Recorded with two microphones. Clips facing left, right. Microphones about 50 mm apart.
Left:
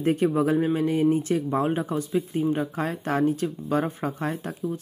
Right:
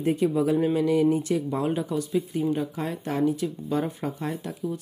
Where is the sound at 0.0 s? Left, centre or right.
Left.